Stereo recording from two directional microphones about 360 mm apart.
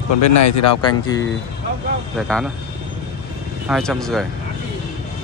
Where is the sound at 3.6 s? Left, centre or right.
Centre.